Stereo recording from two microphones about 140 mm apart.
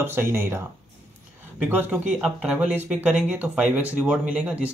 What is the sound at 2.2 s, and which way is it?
Speech, 5° right (ahead or behind).